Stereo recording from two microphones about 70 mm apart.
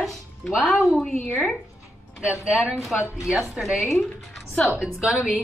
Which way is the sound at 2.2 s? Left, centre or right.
Centre.